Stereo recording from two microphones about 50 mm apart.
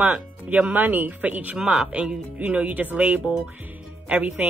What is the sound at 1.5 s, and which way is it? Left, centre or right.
Speech, centre.